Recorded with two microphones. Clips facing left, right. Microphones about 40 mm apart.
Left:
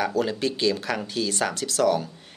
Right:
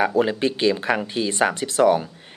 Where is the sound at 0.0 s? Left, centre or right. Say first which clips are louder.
Right 5 dB; right.